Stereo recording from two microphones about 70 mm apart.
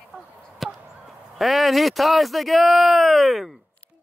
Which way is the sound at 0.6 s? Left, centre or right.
Centre.